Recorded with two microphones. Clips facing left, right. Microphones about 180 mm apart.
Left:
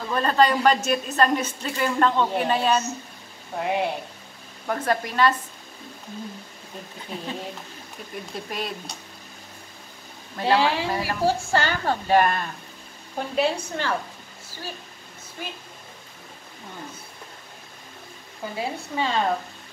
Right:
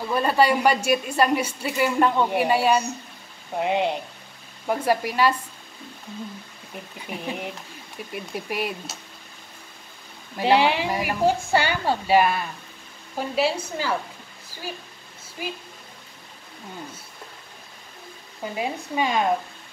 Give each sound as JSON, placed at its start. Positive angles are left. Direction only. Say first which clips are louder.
{"t": 0.0, "sound": "a woman's voice", "louder": "even", "side_deg": -10}
{"t": 4.6, "sound": "a woman's voice", "louder": "right 2 dB", "side_deg": -10}
{"t": 7.1, "sound": "a woman's voice", "louder": "right 2 dB", "side_deg": -15}
{"t": 10.3, "sound": "a woman's voice", "louder": "right 2 dB", "side_deg": -20}
{"t": 15.4, "sound": "a woman's voice", "louder": "right 4 dB", "side_deg": -5}
{"t": 18.4, "sound": "a woman's voice", "louder": "right 1 dB", "side_deg": -15}